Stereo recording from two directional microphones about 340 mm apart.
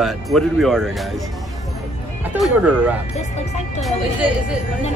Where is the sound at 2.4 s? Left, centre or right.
Centre.